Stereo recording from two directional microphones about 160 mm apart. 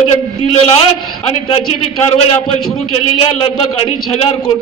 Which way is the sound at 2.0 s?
40° left (ahead or behind).